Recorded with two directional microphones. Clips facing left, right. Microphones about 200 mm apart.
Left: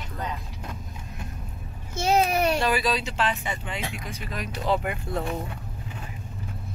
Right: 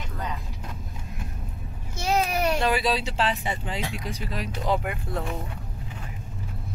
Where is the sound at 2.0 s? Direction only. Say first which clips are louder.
Left 3 dB; 25° left (ahead or behind).